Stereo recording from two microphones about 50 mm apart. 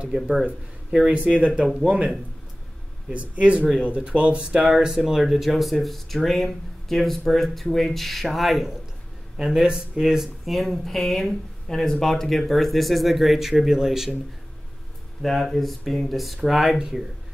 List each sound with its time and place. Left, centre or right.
0.0 s speech: right
3.1 s speech: right
4.6 s speech: centre
9.4 s speech: centre
15.2 s speech: centre